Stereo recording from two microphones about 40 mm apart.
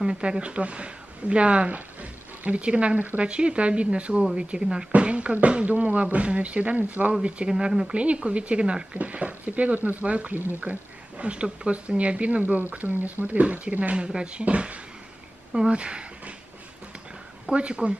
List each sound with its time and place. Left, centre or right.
0.0 s speech: right
7.9 s speech: right
13.3 s speech: right
17.5 s speech: right